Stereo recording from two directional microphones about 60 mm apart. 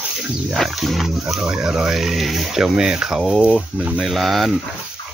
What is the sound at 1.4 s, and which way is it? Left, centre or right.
Speech, centre.